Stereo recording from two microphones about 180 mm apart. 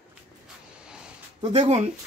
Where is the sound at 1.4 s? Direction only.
35° right (ahead or behind).